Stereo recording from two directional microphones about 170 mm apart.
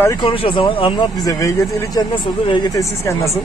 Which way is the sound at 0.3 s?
30° left (ahead or behind).